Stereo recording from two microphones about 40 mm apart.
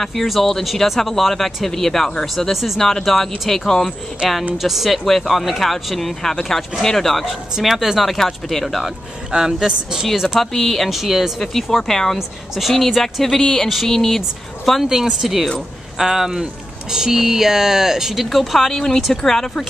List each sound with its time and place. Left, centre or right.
0.0 s speech: centre
2.5 s speech: centre
4.6 s speech: centre
7.2 s speech: centre
8.8 s speech: centre
10.4 s speech: centre
12.2 s speech: centre
14.9 s speech: centre
18.3 s speech: centre